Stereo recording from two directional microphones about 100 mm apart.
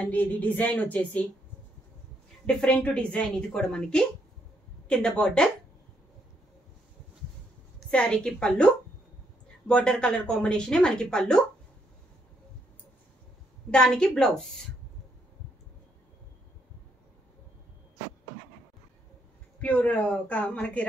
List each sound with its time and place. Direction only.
0.0 s a woman's voice: 15° left (ahead or behind)
2.4 s a woman's voice: 10° left (ahead or behind)
7.9 s a woman's voice: 10° left (ahead or behind)
13.7 s a woman's voice: 10° left (ahead or behind)
19.6 s a woman's voice: 15° left (ahead or behind)